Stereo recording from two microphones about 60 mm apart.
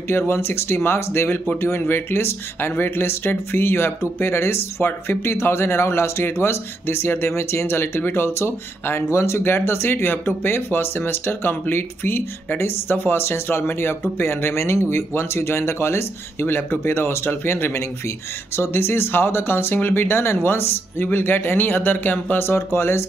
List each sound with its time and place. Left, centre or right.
0.3 s speech: left
22.4 s speech: left